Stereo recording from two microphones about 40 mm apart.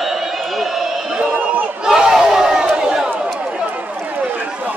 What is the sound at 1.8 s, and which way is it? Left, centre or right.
Battle cry, centre.